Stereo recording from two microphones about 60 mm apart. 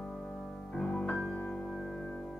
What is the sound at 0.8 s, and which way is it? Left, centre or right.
Music, centre.